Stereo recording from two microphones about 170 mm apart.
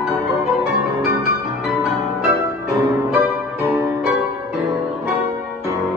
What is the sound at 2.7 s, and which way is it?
Music, 20° right (ahead or behind).